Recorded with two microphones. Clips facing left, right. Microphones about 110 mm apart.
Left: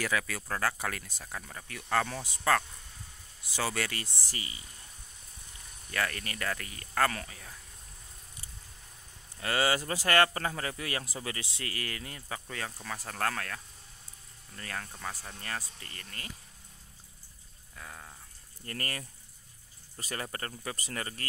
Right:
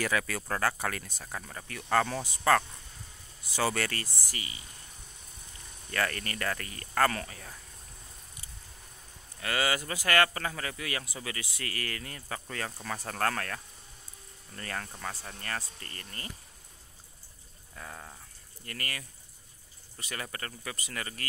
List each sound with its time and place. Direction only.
0.0 s speech: centre (ahead or behind)
4.3 s speech: 30° left (ahead or behind)
5.9 s speech: 5° left (ahead or behind)
9.4 s speech: 30° left (ahead or behind)
12.4 s speech: 5° left (ahead or behind)
17.7 s a sound: 5° right (ahead or behind)
18.7 s speech: 35° left (ahead or behind)